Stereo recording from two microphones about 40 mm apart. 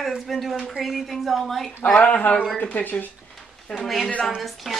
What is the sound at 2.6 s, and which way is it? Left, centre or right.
Speech, left.